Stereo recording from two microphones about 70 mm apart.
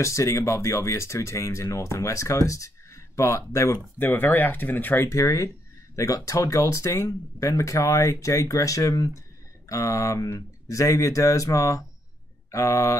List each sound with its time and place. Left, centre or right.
0.0 s speech: left
4.0 s speech: left
5.1 s speech: left